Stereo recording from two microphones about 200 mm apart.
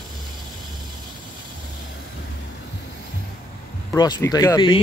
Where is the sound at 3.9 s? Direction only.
15° left (ahead or behind).